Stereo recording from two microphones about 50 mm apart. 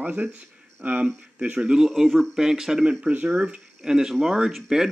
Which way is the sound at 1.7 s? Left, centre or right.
Centre.